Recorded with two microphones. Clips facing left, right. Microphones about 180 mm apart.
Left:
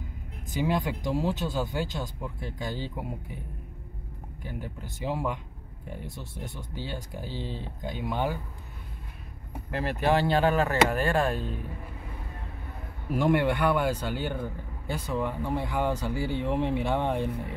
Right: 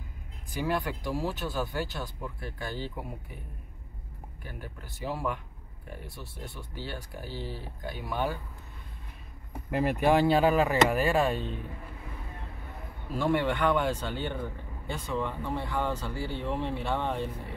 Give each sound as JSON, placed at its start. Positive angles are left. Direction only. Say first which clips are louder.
{"t": 0.5, "sound": "speech", "louder": "left 3 dB", "side_deg": 20}
{"t": 4.4, "sound": "speech", "louder": "left 5 dB", "side_deg": 15}
{"t": 10.0, "sound": "speech", "louder": "right 1 dB", "side_deg": -5}
{"t": 13.1, "sound": "speech", "louder": "left 3 dB", "side_deg": 15}